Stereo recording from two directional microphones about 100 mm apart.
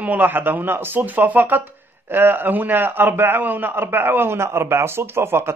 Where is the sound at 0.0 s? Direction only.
15° right (ahead or behind).